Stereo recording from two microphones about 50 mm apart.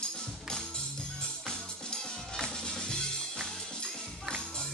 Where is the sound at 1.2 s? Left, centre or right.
Centre.